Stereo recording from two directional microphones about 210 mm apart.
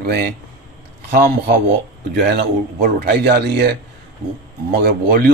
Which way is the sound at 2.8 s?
50° right (ahead or behind).